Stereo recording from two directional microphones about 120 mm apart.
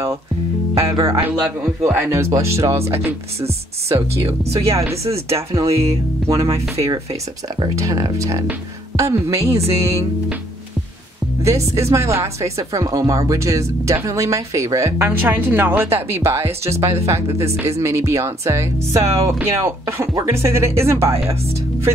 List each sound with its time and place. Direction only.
1.0 s speech: 20° right (ahead or behind)
11.7 s speech: 25° right (ahead or behind)